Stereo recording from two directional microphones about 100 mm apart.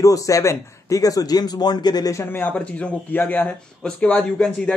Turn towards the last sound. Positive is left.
turn(degrees=10)  # may be behind; listen again after turning